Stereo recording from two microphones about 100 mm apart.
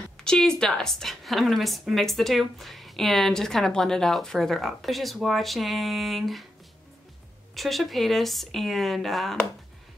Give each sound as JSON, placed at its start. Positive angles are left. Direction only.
{"t": 0.2, "sound": "a woman's voice", "side_deg": 5}
{"t": 7.5, "sound": "a woman's voice", "side_deg": 0}